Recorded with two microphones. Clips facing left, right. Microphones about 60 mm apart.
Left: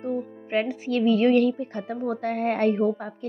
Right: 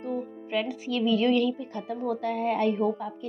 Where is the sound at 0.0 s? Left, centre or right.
Left.